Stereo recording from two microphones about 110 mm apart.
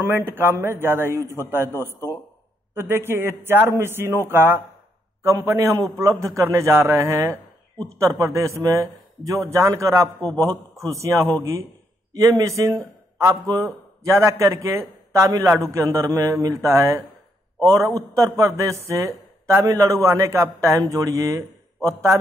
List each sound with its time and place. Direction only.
0.0 s a man's voice: 20° right (ahead or behind)
2.7 s a man's voice: 25° right (ahead or behind)
5.2 s a man's voice: 30° right (ahead or behind)